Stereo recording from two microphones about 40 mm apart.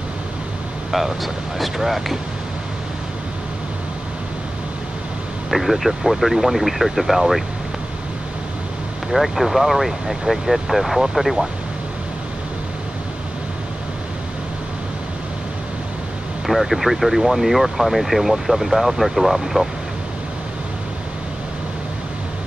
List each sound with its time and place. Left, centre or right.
0.9 s speech: centre
5.5 s speech: centre
9.1 s speech: centre
16.4 s speech: centre